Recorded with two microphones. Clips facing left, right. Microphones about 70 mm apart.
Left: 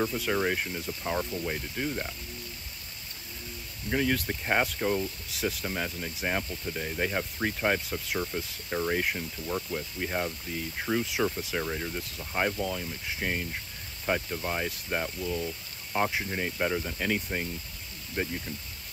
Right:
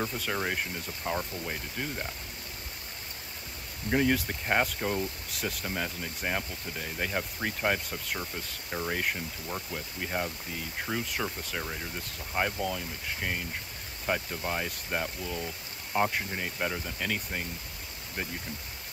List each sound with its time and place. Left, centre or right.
0.0 s speech: centre
3.9 s speech: centre
18.2 s speech: left